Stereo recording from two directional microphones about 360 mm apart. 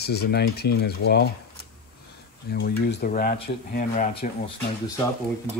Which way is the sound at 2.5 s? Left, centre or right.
Left.